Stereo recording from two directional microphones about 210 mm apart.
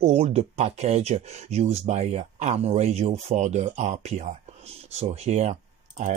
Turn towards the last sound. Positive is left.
turn(degrees=-35)  # may be behind; listen again after turning